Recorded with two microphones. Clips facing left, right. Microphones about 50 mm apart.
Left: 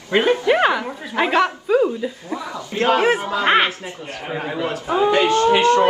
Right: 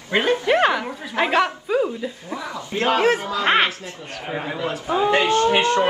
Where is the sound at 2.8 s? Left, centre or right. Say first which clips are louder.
Left 2 dB; centre.